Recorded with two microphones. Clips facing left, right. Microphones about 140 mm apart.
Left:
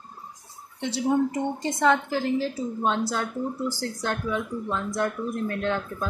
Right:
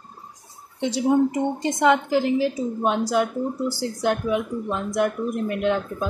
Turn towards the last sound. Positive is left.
turn(degrees=-15)  # may be behind; listen again after turning